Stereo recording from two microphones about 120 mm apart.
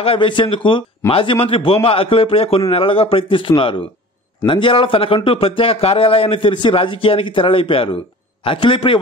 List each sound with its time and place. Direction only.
0.0 s a man's voice: 45° left (ahead or behind)